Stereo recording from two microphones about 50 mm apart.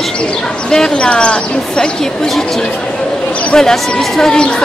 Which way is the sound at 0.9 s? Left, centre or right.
Left.